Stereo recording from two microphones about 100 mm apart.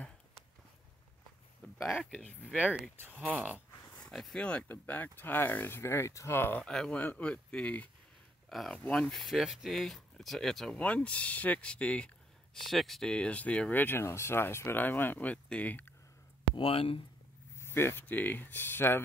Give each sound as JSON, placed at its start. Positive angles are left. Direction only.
{"t": 1.6, "sound": "a sound", "side_deg": 5}
{"t": 2.0, "sound": "speech", "side_deg": 10}
{"t": 2.5, "sound": "speech", "side_deg": -10}
{"t": 4.0, "sound": "speech", "side_deg": 5}
{"t": 6.6, "sound": "speech", "side_deg": 10}
{"t": 8.5, "sound": "speech", "side_deg": 0}
{"t": 8.7, "sound": "speech", "side_deg": 15}
{"t": 9.0, "sound": "speech", "side_deg": 0}
{"t": 12.6, "sound": "speech", "side_deg": 0}
{"t": 16.5, "sound": "speech", "side_deg": 70}
{"t": 17.6, "sound": "speech", "side_deg": 25}